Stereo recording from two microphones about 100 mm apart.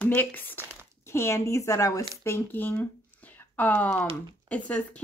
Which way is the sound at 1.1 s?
25° left (ahead or behind).